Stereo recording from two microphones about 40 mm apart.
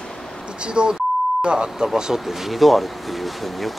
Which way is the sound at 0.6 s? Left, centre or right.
Right.